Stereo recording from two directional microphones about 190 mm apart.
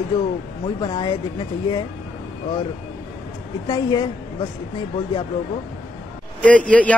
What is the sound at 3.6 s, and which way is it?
Speech, 20° left (ahead or behind).